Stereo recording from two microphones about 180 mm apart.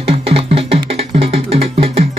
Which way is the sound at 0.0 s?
35° right (ahead or behind).